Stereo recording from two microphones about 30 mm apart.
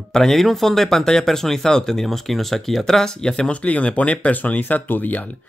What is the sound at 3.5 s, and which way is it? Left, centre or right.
Speech, left.